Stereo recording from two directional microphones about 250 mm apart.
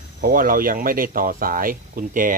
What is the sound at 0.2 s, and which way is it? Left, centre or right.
Speech, right.